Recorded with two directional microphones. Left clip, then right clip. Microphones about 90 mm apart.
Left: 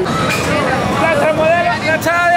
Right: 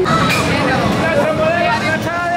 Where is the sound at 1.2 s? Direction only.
Centre (ahead or behind).